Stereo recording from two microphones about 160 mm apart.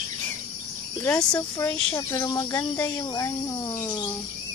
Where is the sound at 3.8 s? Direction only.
25° left (ahead or behind).